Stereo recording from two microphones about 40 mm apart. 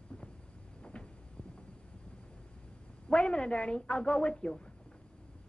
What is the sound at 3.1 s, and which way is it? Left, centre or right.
A woman's voice, left.